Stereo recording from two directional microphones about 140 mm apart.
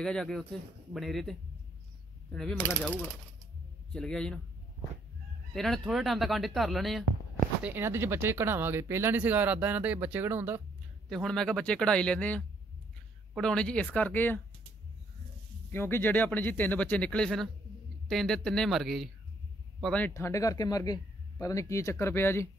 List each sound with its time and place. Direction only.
0.0 s speech: 5° left (ahead or behind)
2.3 s speech: 5° left (ahead or behind)
5.5 s speech: centre (ahead or behind)
7.6 s speech: 15° right (ahead or behind)
11.1 s speech: centre (ahead or behind)
15.7 s speech: 15° left (ahead or behind)
20.2 s speech: 20° left (ahead or behind)